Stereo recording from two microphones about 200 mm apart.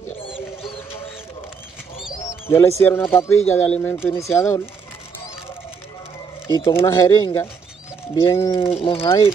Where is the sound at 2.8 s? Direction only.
10° left (ahead or behind).